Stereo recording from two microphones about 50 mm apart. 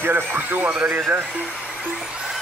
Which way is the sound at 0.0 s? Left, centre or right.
Right.